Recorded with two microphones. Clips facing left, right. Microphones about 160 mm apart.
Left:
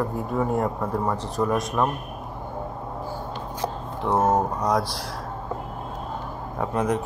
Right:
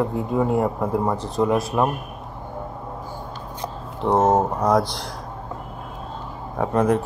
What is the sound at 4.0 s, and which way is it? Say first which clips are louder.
Speech: right 4 dB; 20° right (ahead or behind).